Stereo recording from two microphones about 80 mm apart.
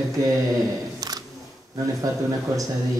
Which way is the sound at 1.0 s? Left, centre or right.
Right.